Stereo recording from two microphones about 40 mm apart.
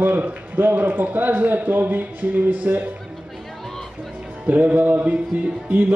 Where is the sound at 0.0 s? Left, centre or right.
Right.